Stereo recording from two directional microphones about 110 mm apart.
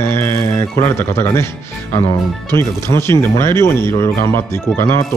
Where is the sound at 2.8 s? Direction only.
25° left (ahead or behind).